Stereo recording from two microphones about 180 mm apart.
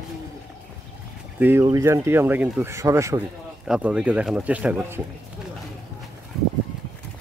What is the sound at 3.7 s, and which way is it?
Speech, 5° right (ahead or behind).